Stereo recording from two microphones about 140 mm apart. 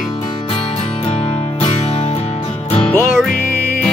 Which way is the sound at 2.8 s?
15° left (ahead or behind).